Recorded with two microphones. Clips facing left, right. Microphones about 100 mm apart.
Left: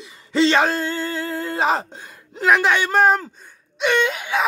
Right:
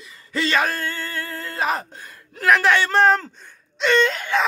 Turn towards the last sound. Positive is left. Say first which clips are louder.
# right 1 dB
turn(degrees=10)  # may be behind; listen again after turning